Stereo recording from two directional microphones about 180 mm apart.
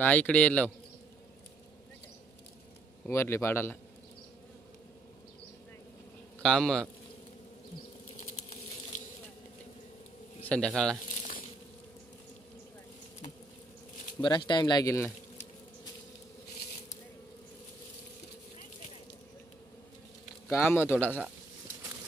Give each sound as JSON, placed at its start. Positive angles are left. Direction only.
{"t": 0.0, "sound": "speech", "side_deg": 10}
{"t": 3.1, "sound": "speech", "side_deg": 15}
{"t": 6.4, "sound": "speech", "side_deg": 5}
{"t": 8.9, "sound": "insect", "side_deg": 45}
{"t": 10.5, "sound": "speech", "side_deg": 5}
{"t": 14.2, "sound": "speech", "side_deg": 25}
{"t": 20.5, "sound": "speech", "side_deg": 15}